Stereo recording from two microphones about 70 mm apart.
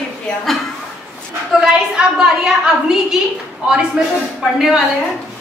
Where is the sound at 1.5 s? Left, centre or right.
Centre.